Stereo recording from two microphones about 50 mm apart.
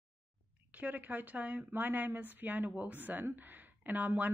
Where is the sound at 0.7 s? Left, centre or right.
Right.